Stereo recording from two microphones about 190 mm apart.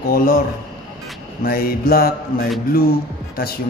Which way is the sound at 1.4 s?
50° left (ahead or behind).